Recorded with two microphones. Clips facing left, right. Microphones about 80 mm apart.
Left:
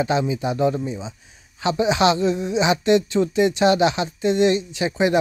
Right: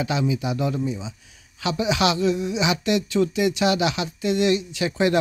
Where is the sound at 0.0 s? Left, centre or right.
Left.